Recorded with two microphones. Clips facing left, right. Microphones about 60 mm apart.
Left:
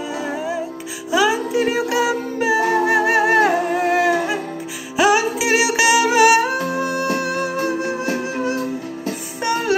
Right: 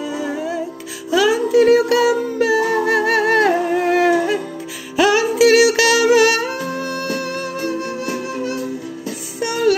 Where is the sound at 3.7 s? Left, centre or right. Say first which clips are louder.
Right 2 dB; centre.